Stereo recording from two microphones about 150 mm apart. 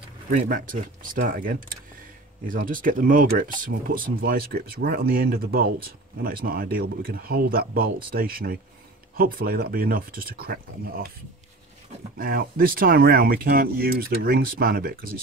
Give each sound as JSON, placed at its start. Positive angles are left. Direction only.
{"t": 0.3, "sound": "speech", "side_deg": -65}
{"t": 12.2, "sound": "speech", "side_deg": -75}